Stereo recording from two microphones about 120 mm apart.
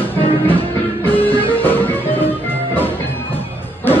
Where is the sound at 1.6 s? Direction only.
15° left (ahead or behind).